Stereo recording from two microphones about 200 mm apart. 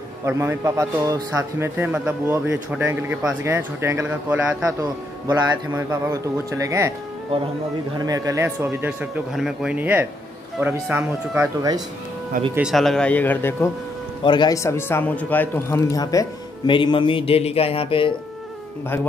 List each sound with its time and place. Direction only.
0.2 s a man's voice: 15° right (ahead or behind)
8.0 s a man's voice: 15° right (ahead or behind)
12.5 s a man's voice: centre (ahead or behind)
14.2 s speech: 20° left (ahead or behind)